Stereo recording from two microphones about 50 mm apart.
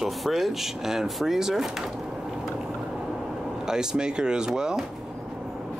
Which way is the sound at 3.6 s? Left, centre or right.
Centre.